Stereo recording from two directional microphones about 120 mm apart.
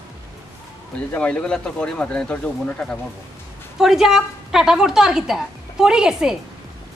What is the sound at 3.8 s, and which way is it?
A woman's voice, 5° right (ahead or behind).